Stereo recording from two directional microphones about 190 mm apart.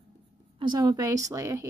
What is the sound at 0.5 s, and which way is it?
Speech, 25° right (ahead or behind).